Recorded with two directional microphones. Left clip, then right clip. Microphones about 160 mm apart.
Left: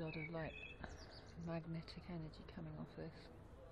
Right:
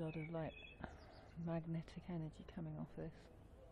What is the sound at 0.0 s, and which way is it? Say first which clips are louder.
Bird: even; 20° right (ahead or behind).